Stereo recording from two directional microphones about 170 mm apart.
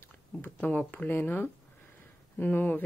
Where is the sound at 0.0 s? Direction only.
10° left (ahead or behind).